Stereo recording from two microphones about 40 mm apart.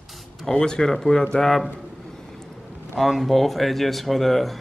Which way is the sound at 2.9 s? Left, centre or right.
Centre.